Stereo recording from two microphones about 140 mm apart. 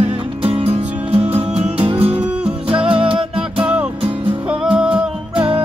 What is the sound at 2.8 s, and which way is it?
Music, 40° right (ahead or behind).